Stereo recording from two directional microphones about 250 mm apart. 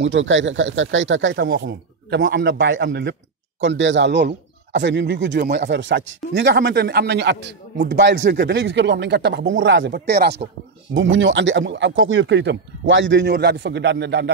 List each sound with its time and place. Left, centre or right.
0.0 s speech: right